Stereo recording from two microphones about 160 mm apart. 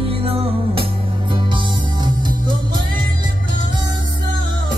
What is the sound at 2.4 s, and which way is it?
Music, 30° right (ahead or behind).